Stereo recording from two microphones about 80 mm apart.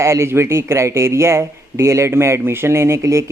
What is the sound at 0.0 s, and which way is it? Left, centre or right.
Speech, right.